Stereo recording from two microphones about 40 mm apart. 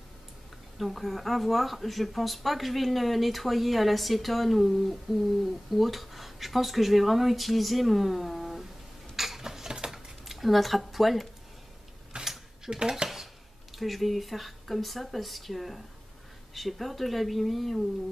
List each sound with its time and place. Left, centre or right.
0.7 s speech: centre
9.1 s a sound: centre
10.2 s speech: centre
12.1 s a sound: right
12.6 s speech: centre
13.7 s speech: centre